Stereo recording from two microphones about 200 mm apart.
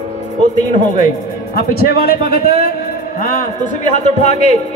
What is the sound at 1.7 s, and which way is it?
A man's voice, 50° left (ahead or behind).